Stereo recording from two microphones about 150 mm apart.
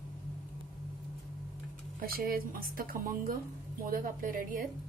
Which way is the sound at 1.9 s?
75° right (ahead or behind).